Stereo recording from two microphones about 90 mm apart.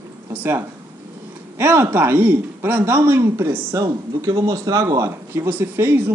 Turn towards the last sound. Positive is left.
turn(degrees=-25)  # may be behind; listen again after turning